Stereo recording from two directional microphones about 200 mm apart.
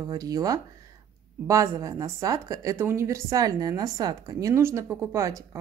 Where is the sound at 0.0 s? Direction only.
20° right (ahead or behind).